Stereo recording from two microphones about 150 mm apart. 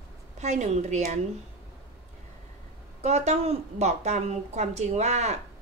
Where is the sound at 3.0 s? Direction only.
50° right (ahead or behind).